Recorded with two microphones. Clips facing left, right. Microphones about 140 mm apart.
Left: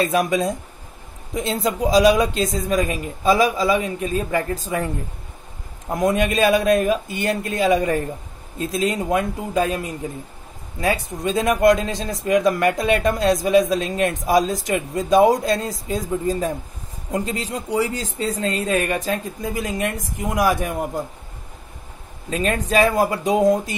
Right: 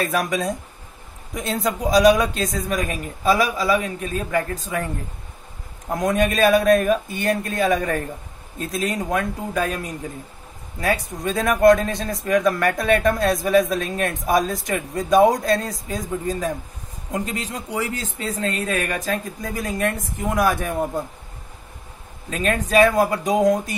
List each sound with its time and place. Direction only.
0.1 s speech: 25° left (ahead or behind)
5.9 s a man's voice: 25° left (ahead or behind)
22.3 s speech: 30° left (ahead or behind)